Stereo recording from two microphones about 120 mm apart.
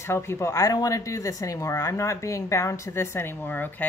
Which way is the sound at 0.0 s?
20° left (ahead or behind).